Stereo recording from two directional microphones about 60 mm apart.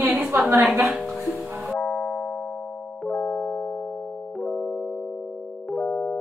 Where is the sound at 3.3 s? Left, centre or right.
Centre.